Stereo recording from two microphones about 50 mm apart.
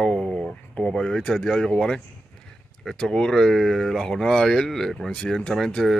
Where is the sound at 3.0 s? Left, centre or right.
Centre.